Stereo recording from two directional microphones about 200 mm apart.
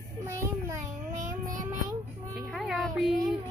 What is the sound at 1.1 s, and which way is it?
Child singing, 40° right (ahead or behind).